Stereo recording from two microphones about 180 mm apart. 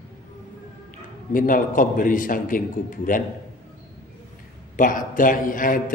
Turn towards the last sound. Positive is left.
turn(degrees=50)  # may be behind; listen again after turning